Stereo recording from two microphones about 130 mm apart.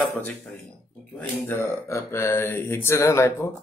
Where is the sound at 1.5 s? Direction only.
20° left (ahead or behind).